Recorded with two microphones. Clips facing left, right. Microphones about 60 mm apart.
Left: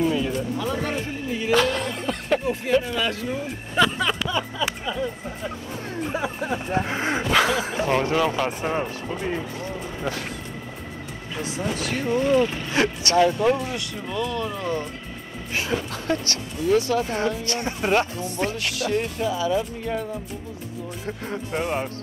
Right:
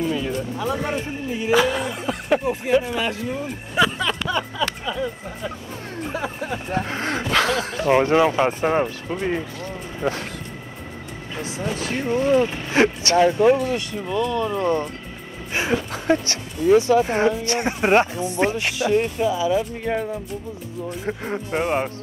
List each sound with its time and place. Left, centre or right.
0.0 s speech: centre
0.6 s speech: centre
3.3 s speech: centre
4.0 s a sound: centre
4.6 s speech: centre
6.1 s speech: centre
8.0 s speech: right
11.7 s speech: right
14.3 s speech: centre
14.6 s speech: right
15.5 s speech: right
21.0 s speech: right